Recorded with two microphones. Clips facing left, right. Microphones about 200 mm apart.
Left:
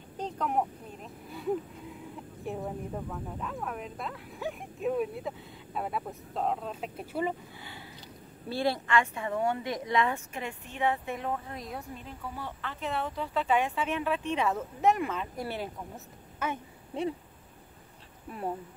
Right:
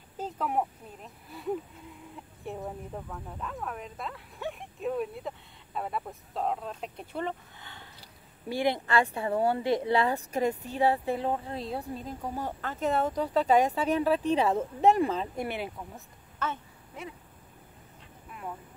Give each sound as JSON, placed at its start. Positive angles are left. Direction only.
{"t": 0.2, "sound": "a woman's voice", "side_deg": 0}
{"t": 8.5, "sound": "speech", "side_deg": -15}
{"t": 8.8, "sound": "a woman's voice", "side_deg": -35}
{"t": 15.4, "sound": "speech", "side_deg": -15}
{"t": 16.4, "sound": "speech", "side_deg": 10}
{"t": 16.9, "sound": "speech", "side_deg": 30}